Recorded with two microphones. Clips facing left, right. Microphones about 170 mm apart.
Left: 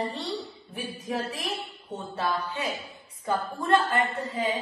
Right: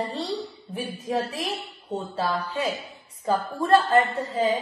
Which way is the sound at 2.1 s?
30° right (ahead or behind).